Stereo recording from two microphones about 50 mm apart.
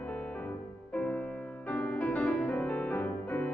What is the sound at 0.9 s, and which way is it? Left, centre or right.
Music, left.